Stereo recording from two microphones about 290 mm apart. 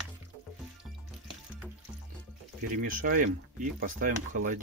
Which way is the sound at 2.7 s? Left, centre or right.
Right.